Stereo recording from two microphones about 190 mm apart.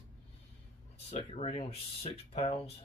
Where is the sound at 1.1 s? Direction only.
35° left (ahead or behind).